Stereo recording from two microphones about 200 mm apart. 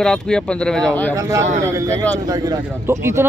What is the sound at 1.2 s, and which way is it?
Speech, 15° right (ahead or behind).